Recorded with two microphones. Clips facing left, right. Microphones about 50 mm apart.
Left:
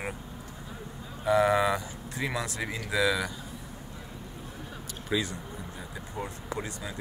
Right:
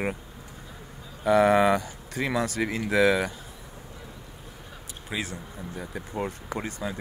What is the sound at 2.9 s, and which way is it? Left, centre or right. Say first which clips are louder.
Speech: right 5 dB; right.